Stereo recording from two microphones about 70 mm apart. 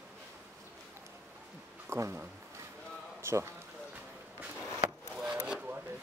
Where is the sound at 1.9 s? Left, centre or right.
Right.